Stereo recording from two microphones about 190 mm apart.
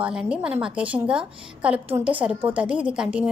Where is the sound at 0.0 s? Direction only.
5° right (ahead or behind).